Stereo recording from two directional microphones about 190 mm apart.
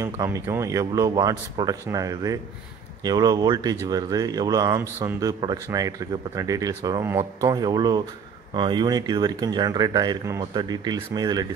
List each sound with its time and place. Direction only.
0.0 s speech: 15° right (ahead or behind)